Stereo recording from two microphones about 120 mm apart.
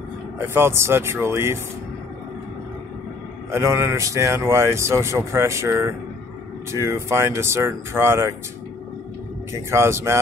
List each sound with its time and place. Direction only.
0.4 s speech: 20° right (ahead or behind)
3.5 s speech: 25° right (ahead or behind)
9.5 s speech: 25° right (ahead or behind)